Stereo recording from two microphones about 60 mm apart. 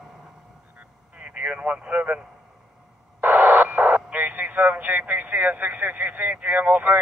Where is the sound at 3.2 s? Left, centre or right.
Right.